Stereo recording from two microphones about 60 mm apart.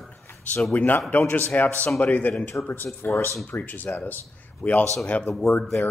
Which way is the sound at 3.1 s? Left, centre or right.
Left.